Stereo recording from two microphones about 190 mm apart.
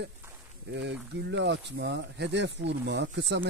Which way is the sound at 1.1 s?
65° right (ahead or behind).